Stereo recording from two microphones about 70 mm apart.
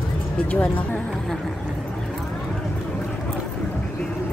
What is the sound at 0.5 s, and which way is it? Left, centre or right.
Speech, left.